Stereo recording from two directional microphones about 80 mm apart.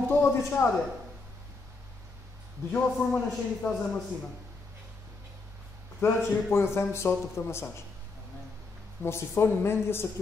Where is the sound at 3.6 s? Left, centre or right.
Centre.